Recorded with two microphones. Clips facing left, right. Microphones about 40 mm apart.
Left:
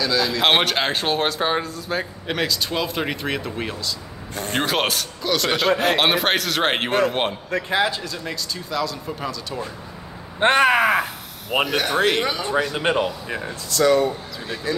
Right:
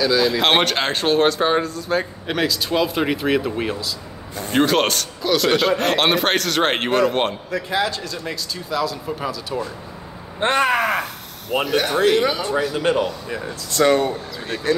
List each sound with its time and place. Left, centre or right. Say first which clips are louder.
0.0 s speech: right 2 dB; centre
10.5 s speech: left 2 dB; centre
12.7 s speech: right 4 dB; left
13.7 s speech: right 1 dB; right
14.7 s speech: right 5 dB; right